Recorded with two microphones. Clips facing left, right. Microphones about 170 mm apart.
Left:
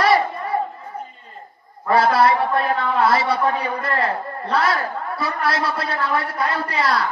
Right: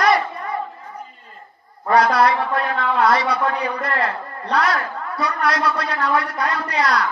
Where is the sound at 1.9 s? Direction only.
30° left (ahead or behind).